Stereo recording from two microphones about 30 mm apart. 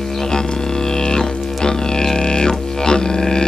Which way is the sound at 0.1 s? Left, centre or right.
Centre.